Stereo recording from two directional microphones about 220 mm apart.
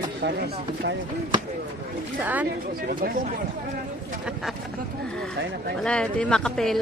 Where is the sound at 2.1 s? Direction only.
5° right (ahead or behind).